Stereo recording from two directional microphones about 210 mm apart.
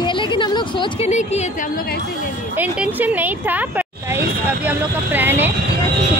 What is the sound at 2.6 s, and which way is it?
Speech, 10° right (ahead or behind).